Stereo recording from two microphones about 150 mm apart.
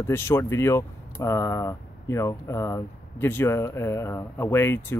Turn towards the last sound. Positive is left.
turn(degrees=15)  # may be behind; listen again after turning